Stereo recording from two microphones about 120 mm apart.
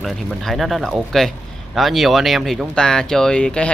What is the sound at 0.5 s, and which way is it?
Speech, centre (ahead or behind).